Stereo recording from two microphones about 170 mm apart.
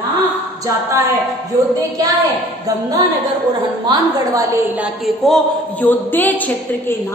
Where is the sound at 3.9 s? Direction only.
20° right (ahead or behind).